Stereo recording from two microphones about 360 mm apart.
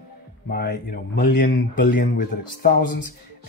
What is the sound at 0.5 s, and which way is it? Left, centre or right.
Speech, left.